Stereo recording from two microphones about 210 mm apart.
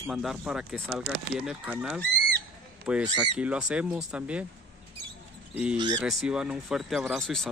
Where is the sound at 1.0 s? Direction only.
50° right (ahead or behind).